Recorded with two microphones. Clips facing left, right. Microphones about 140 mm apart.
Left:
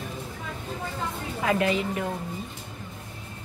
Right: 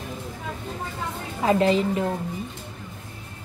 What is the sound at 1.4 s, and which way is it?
Speech, 30° right (ahead or behind).